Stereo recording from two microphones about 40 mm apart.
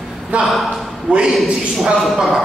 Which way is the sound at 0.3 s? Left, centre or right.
Right.